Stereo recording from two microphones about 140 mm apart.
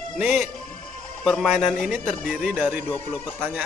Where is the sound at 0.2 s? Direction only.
5° right (ahead or behind).